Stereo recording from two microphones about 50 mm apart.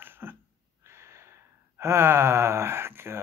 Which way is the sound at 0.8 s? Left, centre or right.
Right.